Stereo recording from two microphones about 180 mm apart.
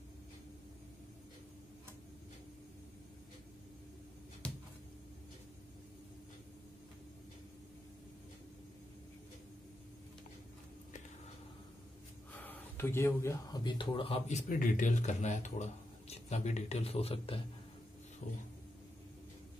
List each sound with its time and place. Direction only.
12.4 s speech: 10° left (ahead or behind); by 17.4 s 30° left (ahead or behind)